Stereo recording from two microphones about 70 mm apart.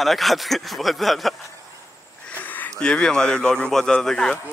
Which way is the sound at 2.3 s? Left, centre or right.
Left.